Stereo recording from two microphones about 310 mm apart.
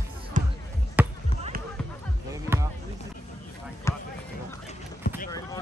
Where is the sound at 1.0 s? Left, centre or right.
Centre.